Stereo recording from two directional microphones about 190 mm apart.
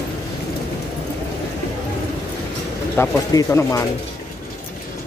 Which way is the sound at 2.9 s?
15° left (ahead or behind).